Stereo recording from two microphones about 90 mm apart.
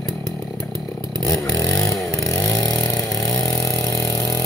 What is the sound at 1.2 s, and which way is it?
Chainsaw, 35° left (ahead or behind).